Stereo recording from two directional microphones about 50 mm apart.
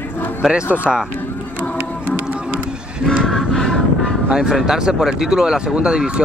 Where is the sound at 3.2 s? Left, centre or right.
Centre.